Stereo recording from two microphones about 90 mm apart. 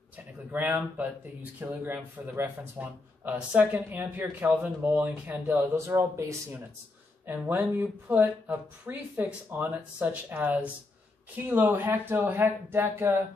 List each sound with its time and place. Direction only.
0.5 s speech: 15° right (ahead or behind)
7.4 s speech: 20° right (ahead or behind)